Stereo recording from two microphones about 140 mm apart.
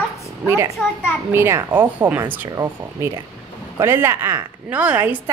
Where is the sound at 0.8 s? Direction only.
15° left (ahead or behind).